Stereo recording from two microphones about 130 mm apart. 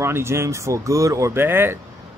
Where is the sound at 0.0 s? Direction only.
20° right (ahead or behind).